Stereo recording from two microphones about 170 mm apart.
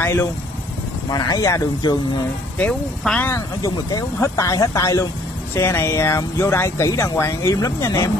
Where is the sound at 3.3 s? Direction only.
20° left (ahead or behind).